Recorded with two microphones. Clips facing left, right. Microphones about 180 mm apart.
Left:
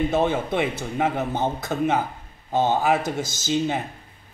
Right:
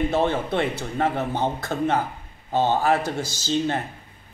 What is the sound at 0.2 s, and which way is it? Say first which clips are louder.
Speech: even; 10° left (ahead or behind).